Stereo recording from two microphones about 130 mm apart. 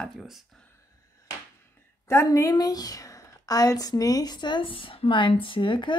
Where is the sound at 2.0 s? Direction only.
20° left (ahead or behind).